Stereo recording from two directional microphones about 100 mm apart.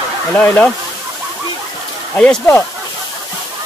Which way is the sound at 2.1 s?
15° left (ahead or behind).